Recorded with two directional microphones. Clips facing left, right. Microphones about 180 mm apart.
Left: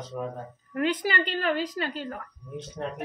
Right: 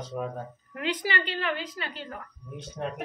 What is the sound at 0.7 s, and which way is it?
A woman's voice, 50° left (ahead or behind).